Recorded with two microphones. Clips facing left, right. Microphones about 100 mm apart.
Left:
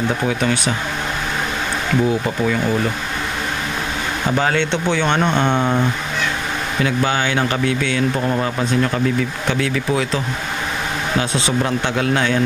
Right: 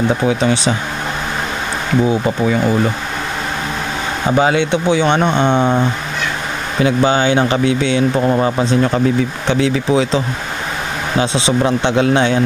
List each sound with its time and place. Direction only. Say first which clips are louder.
0.3 s speech: right 4 dB; 20° right (ahead or behind)
4.3 s speech: right 5 dB; 15° right (ahead or behind)